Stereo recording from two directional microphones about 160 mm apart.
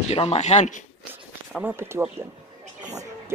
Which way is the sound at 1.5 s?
10° right (ahead or behind).